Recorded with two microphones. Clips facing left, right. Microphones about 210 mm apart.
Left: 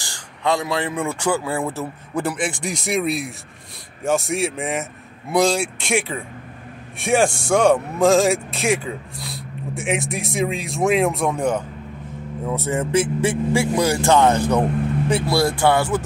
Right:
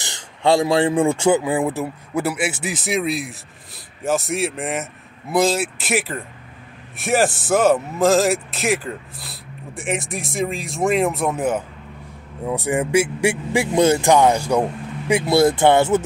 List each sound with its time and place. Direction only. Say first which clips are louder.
0.0 s speech: right 4 dB; 25° right (ahead or behind)